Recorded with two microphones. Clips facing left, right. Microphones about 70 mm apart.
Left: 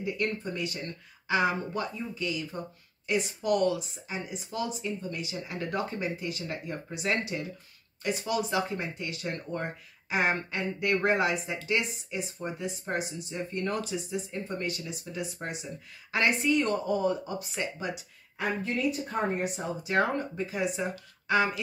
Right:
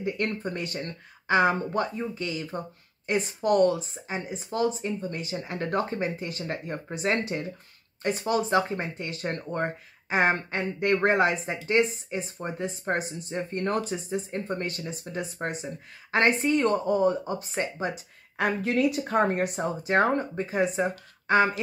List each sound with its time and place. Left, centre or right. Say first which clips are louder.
0.0 s a woman's voice: right 2 dB; right
18.4 s speech: right 5 dB; right